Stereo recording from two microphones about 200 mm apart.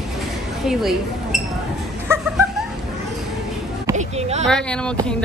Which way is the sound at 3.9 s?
35° right (ahead or behind).